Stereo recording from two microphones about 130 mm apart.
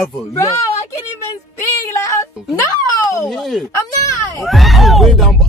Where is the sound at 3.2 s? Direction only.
Centre (ahead or behind).